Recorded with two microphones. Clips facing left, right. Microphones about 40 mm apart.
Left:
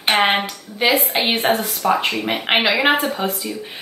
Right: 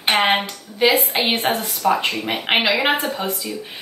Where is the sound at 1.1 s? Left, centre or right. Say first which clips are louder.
Left 2 dB; centre.